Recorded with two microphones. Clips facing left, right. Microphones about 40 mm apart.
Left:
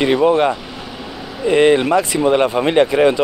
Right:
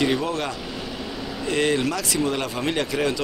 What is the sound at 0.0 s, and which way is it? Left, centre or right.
Speech, left.